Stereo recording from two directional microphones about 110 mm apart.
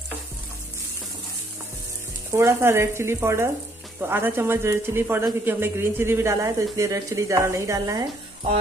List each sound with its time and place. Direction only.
2.3 s speech: 25° right (ahead or behind)